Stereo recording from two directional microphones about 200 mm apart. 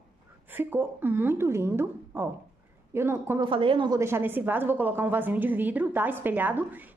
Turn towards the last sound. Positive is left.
turn(degrees=-10)  # may be behind; listen again after turning